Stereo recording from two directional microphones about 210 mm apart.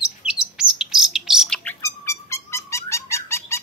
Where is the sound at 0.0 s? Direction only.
5° right (ahead or behind).